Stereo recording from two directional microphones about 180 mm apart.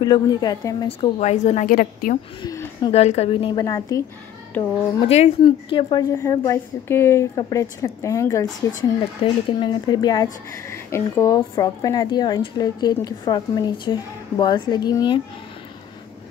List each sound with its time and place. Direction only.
0.0 s a woman's voice: 25° left (ahead or behind); by 2.1 s 50° left (ahead or behind)
2.4 s a sound: 25° left (ahead or behind)
2.9 s a woman's voice: 35° left (ahead or behind)
3.6 s speech: 20° left (ahead or behind)
5.0 s a woman's voice: 35° left (ahead or behind)
5.4 s speech: 25° left (ahead or behind)
6.1 s a woman's voice: 15° left (ahead or behind)